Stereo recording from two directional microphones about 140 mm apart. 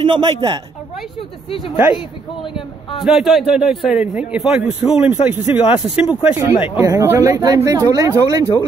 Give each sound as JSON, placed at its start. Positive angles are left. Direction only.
{"t": 0.0, "sound": "speech", "side_deg": -40}
{"t": 3.0, "sound": "a man's voice", "side_deg": 0}
{"t": 6.8, "sound": "speech", "side_deg": -25}